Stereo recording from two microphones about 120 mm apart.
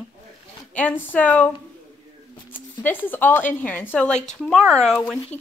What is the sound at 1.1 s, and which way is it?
Speech, 15° left (ahead or behind).